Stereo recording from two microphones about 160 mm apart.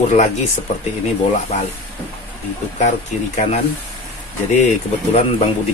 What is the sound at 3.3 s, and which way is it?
Speech, 40° left (ahead or behind).